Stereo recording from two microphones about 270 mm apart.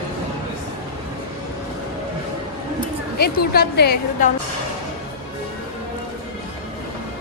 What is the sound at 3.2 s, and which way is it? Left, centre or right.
A woman's voice, left.